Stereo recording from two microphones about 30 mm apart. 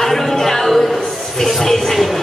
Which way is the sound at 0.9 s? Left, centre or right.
Centre.